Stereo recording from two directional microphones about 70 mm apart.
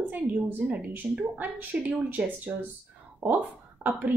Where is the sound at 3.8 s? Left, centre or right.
Right.